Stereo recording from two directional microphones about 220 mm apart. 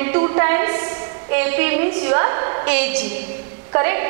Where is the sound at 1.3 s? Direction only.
15° right (ahead or behind).